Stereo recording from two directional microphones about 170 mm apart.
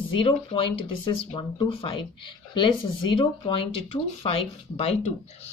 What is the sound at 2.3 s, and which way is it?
Speech, 25° left (ahead or behind).